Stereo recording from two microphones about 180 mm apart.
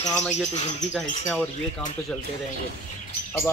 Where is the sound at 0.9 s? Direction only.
5° left (ahead or behind).